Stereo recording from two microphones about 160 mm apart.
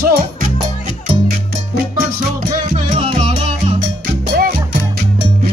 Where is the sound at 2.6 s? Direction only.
40° right (ahead or behind).